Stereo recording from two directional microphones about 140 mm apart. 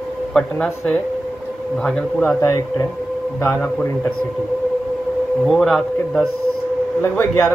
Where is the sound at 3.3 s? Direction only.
15° left (ahead or behind).